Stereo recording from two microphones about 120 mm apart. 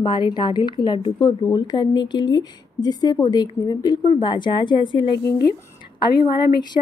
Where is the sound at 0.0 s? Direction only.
40° left (ahead or behind).